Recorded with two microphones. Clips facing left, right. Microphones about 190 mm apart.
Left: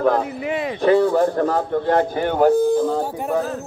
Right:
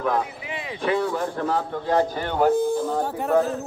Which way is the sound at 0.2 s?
50° left (ahead or behind).